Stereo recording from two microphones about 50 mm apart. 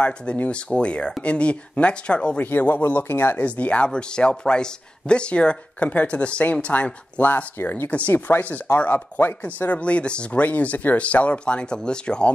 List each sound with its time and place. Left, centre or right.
0.0 s speech: left
2.4 s speech: left
3.4 s speech: left
7.5 s chopping: left
8.7 s speech: left
9.4 s speech: left